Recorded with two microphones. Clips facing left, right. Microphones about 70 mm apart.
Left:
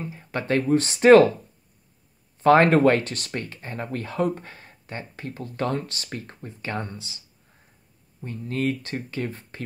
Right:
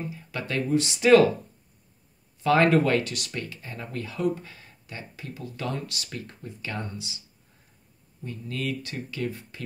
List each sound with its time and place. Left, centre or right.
0.1 s speech: left
2.4 s speech: left
8.2 s speech: left